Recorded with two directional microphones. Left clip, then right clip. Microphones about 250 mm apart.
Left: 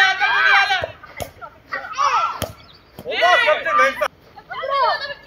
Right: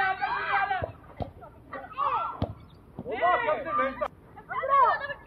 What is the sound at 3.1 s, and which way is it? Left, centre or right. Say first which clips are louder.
Speech: left 10 dB; right.